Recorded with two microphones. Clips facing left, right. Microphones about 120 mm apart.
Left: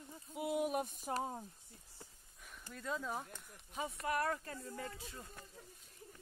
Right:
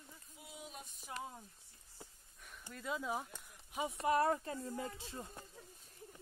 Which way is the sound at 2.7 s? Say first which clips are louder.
Right 1 dB; 5° right (ahead or behind).